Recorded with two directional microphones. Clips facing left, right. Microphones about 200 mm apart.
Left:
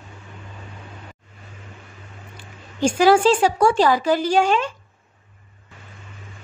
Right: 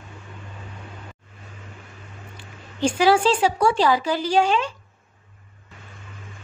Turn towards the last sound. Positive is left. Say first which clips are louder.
# left 2 dB
turn(degrees=50)  # may be behind; listen again after turning